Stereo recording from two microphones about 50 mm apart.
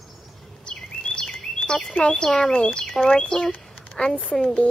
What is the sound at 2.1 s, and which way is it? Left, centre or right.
Speech, centre.